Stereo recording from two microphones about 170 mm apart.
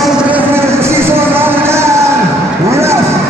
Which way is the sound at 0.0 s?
10° right (ahead or behind).